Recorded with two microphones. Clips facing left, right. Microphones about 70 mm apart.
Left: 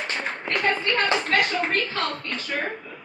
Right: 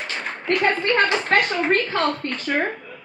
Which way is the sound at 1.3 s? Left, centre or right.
Right.